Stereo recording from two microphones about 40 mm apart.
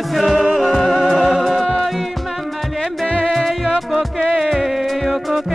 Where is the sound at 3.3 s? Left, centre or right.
Centre.